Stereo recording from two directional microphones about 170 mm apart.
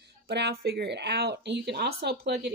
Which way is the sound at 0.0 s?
80° right.